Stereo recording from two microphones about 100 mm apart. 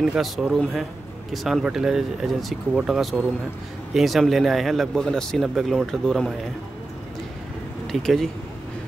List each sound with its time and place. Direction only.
0.0 s speech: 5° right (ahead or behind)
7.8 s speech: centre (ahead or behind)